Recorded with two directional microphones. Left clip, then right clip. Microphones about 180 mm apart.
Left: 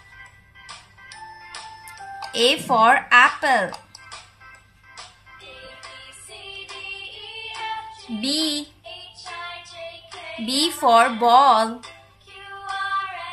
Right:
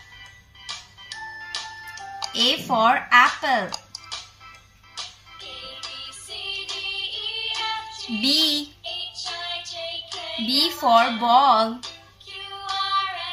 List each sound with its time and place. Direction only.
1.5 s music: 20° right (ahead or behind)
2.3 s speech: 45° left (ahead or behind)
4.9 s music: 20° right (ahead or behind)
8.2 s child singing: 5° left (ahead or behind)
8.8 s music: 20° right (ahead or behind)
10.8 s speech: 40° left (ahead or behind)
12.3 s music: 20° right (ahead or behind)